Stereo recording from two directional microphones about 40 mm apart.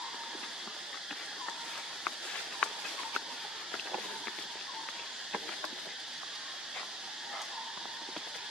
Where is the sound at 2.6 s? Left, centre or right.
Left.